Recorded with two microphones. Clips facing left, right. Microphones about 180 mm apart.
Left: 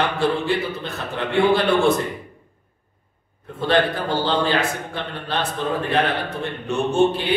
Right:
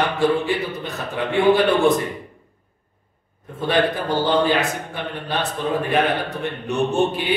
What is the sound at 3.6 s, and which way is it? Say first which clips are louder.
Speech: even; 15° right (ahead or behind).